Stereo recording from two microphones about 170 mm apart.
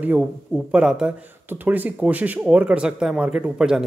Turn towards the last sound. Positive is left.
turn(degrees=-5)  # may be behind; listen again after turning